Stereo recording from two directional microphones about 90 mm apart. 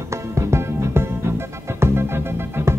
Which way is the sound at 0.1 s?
30° right (ahead or behind).